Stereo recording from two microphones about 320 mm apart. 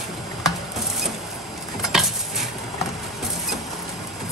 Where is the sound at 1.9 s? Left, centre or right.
Centre.